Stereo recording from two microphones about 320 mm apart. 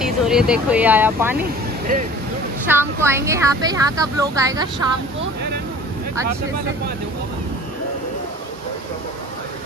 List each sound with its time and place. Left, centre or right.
0.0 s speech: centre
1.4 s speech: right
2.6 s speech: centre